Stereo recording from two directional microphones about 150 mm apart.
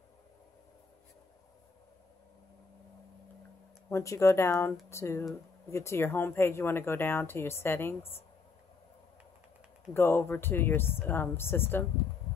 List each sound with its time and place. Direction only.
3.9 s speech: 20° left (ahead or behind)
9.9 s speech: 15° left (ahead or behind)